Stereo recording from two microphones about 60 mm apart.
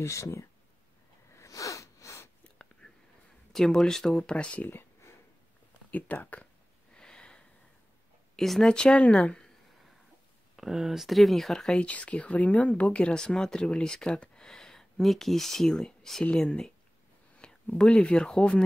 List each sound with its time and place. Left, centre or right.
0.0 s speech: left
1.3 s a sound: left
2.4 s whispering: centre
3.5 s speech: centre
4.6 s a sound: left
5.9 s speech: left
6.9 s a sound: centre
8.4 s speech: centre
9.0 s speech: left
10.5 s speech: centre
11.8 s speech: left
17.4 s speech: centre